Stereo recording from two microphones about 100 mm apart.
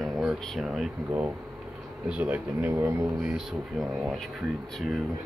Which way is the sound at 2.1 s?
15° right (ahead or behind).